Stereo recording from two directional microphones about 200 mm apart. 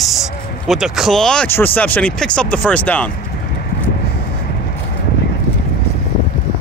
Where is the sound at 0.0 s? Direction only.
Centre (ahead or behind).